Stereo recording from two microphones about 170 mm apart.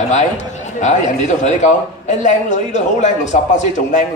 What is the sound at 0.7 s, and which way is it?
Speech, 45° left (ahead or behind).